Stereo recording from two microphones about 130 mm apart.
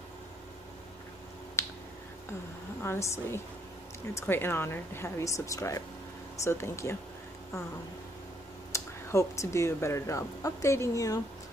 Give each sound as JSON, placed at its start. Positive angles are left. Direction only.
{"t": 1.6, "sound": "finger snapping", "side_deg": 20}
{"t": 2.8, "sound": "speech", "side_deg": 20}
{"t": 8.7, "sound": "speech", "side_deg": 25}